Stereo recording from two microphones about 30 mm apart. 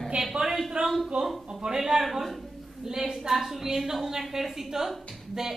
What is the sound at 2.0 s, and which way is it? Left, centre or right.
A man's voice, centre.